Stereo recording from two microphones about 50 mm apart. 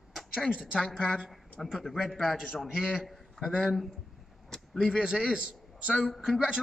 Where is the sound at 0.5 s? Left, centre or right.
Centre.